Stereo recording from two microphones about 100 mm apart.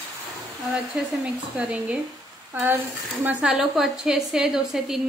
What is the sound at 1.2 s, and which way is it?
Speech, 10° right (ahead or behind).